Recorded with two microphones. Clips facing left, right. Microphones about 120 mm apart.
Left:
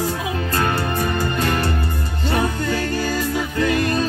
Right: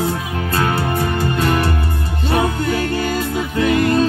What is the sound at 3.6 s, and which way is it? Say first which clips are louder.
Music: right 5 dB; 20° right (ahead or behind).